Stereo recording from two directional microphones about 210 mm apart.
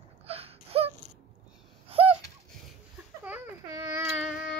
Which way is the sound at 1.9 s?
25° right (ahead or behind).